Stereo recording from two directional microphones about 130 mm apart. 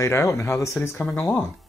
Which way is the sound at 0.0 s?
25° left (ahead or behind).